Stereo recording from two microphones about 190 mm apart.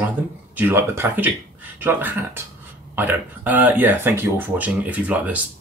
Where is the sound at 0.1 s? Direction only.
10° right (ahead or behind).